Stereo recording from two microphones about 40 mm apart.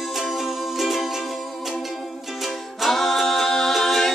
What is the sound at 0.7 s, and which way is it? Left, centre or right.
Music, centre.